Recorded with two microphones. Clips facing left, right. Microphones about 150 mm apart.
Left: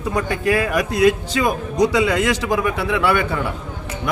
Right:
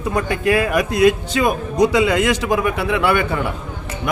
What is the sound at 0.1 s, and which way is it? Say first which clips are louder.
Speech: right 1 dB; 20° right (ahead or behind).